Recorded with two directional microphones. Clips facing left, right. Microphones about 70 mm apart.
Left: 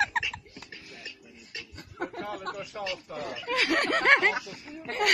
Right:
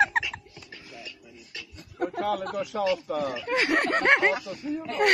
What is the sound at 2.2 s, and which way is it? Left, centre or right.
Speech, right.